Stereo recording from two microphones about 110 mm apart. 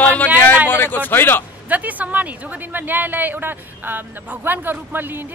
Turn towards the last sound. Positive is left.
turn(degrees=-20)  # may be behind; listen again after turning